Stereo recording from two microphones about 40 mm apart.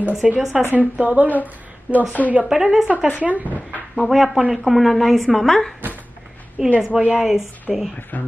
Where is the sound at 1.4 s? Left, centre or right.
Right.